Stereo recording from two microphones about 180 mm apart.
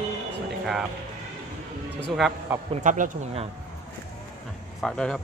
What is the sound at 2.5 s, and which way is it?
Speech, 10° right (ahead or behind).